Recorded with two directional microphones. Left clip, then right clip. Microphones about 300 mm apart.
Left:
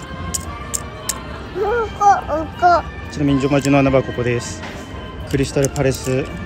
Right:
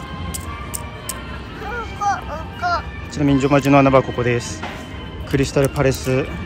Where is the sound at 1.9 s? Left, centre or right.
Left.